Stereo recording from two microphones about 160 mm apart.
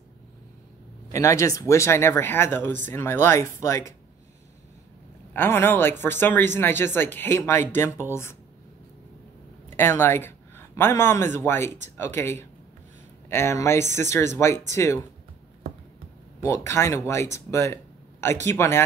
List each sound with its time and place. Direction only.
1.1 s speech: 20° left (ahead or behind)
5.3 s speech: 15° left (ahead or behind)
9.8 s speech: 15° left (ahead or behind)
16.4 s speech: 15° left (ahead or behind)